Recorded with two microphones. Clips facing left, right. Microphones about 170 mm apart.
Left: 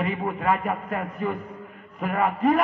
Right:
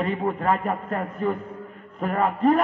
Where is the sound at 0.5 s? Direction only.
30° right (ahead or behind).